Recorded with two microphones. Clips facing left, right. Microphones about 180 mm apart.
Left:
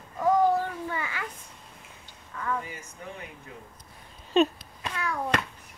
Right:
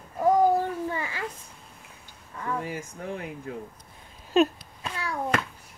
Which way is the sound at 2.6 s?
55° right (ahead or behind).